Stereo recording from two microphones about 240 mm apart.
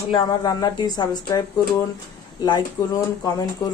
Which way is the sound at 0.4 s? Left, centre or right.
Centre.